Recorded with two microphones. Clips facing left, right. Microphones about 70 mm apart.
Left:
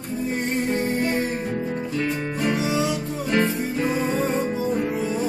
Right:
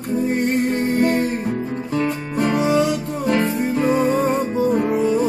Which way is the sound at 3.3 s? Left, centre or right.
Centre.